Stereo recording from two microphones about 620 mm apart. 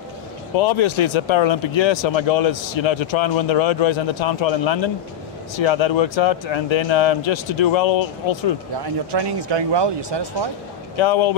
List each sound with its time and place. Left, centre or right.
0.6 s speech: left
8.7 s speech: right
11.0 s speech: left